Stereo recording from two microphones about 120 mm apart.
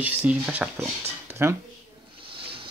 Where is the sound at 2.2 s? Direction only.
45° right (ahead or behind).